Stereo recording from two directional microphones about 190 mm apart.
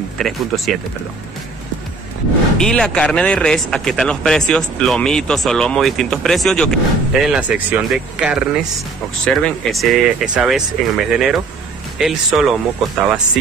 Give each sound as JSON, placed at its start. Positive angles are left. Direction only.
{"t": 0.2, "sound": "speech", "side_deg": 0}
{"t": 2.5, "sound": "speech", "side_deg": 5}